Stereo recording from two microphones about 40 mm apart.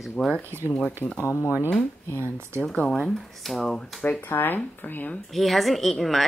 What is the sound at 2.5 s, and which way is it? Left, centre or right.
Speech, right.